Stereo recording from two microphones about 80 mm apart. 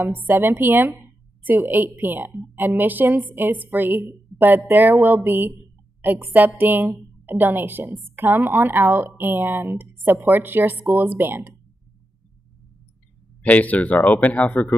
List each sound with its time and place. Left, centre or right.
0.3 s a woman's voice: right
13.4 s speech: centre